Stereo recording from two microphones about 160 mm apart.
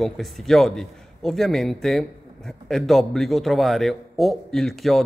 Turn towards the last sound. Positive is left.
turn(degrees=0)  # may be behind; listen again after turning